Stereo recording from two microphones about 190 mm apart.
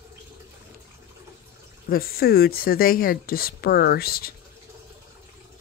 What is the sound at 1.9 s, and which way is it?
Speech, 50° left (ahead or behind).